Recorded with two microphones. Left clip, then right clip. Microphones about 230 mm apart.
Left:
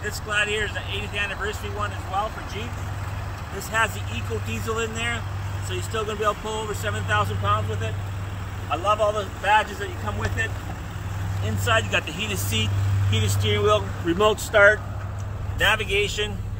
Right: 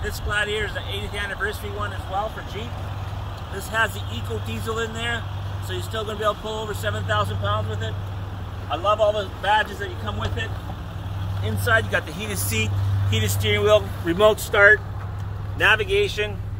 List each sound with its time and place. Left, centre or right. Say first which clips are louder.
0.3 s speech: even; centre
3.7 s speech: even; centre
8.6 s speech: right 2 dB; centre
11.6 s speech: right 2 dB; centre
12.4 s speech: right 1 dB; right